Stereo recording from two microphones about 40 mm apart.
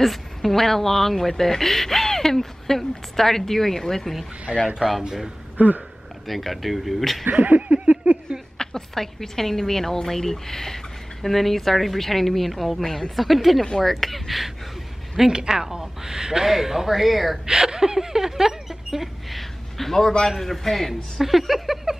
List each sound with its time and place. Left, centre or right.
0.0 s speech: centre
4.5 s speech: right
5.6 s a sound: right
6.2 s speech: centre
7.2 s a sound: right
8.5 s speech: centre
15.1 s speech: centre
17.5 s speech: centre